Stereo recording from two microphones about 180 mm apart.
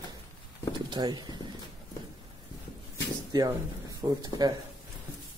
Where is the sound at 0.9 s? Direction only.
20° right (ahead or behind).